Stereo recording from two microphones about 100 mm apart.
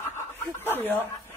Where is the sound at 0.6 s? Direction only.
20° left (ahead or behind).